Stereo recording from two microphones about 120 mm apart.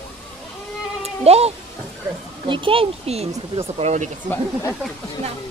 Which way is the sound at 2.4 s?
45° right (ahead or behind).